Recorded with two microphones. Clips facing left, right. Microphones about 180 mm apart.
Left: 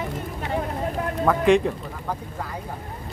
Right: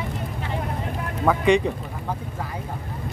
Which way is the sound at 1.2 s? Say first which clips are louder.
Left 1 dB; centre (ahead or behind).